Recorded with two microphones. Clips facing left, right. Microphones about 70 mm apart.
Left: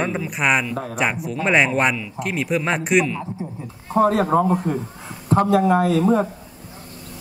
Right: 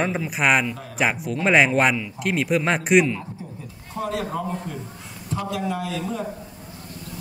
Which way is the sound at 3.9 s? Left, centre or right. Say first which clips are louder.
Left 10 dB; left.